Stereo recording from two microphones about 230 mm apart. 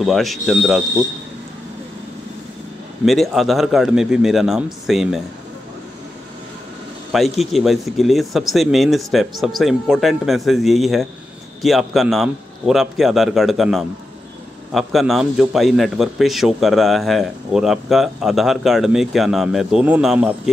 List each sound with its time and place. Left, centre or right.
0.0 s a man's voice: centre
3.1 s a man's voice: centre
7.1 s a man's voice: centre